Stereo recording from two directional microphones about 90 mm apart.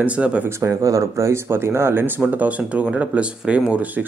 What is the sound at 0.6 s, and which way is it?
Speech, 35° right (ahead or behind).